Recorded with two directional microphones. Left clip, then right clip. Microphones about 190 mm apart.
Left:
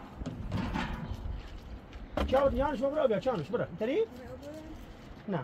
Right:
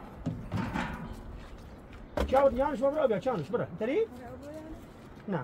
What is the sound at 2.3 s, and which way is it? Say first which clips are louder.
Speech: right 2 dB; 10° right (ahead or behind).